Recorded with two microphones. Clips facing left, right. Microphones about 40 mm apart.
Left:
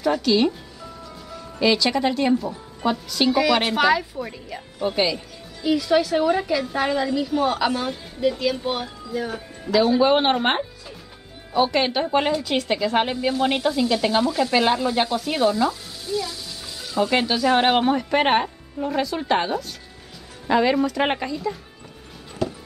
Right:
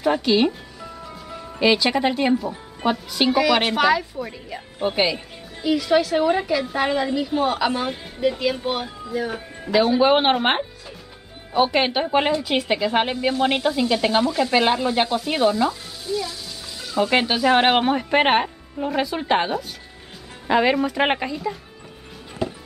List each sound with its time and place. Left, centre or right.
0.0 s a man's voice: right
1.0 s music: right
2.5 s speech: right
3.3 s a woman's voice: centre
4.7 s music: right
5.7 s a woman's voice: centre
7.7 s a woman's voice: centre
16.8 s music: centre
17.1 s a woman's voice: centre
22.4 s music: centre